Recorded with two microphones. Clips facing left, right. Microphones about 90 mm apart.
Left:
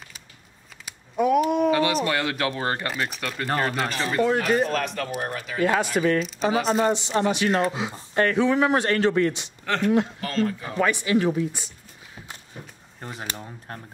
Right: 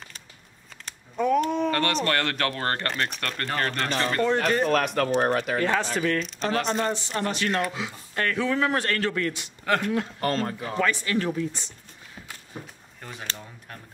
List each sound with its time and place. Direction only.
0.8 s speech: 10° left (ahead or behind)
4.6 s speech: 50° right (ahead or behind)
5.6 s speech: 10° left (ahead or behind)
6.9 s speech: 20° left (ahead or behind)
10.2 s speech: 45° right (ahead or behind)
10.8 s speech: 15° left (ahead or behind)
13.0 s speech: 30° left (ahead or behind)